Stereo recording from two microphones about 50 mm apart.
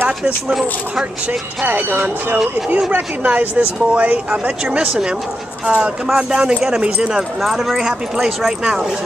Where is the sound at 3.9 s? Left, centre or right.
Right.